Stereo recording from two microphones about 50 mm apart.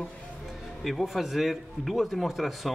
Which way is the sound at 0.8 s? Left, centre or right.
Centre.